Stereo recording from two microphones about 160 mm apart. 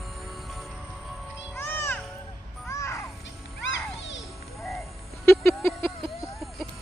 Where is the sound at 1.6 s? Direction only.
15° left (ahead or behind).